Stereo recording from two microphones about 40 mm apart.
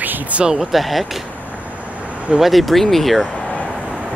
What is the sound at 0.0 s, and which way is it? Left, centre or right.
Sheep, right.